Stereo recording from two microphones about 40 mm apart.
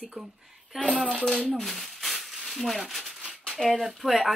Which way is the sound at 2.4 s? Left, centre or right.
Centre.